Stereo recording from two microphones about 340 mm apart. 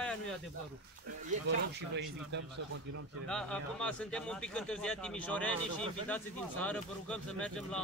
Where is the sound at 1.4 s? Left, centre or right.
Right.